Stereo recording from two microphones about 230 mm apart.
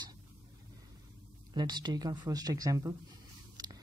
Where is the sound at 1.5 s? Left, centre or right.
Centre.